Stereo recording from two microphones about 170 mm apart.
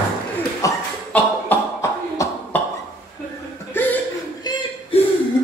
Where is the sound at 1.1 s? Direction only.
15° left (ahead or behind).